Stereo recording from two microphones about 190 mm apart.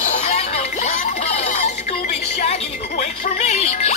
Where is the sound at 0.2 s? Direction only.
35° left (ahead or behind).